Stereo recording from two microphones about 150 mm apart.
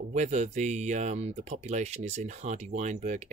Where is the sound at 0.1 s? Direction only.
50° right (ahead or behind).